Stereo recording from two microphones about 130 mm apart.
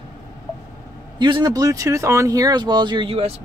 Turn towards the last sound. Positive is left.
turn(degrees=-40)  # may be behind; listen again after turning